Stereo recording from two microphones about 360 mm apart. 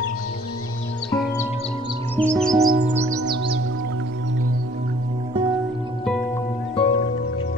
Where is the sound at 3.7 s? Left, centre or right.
Right.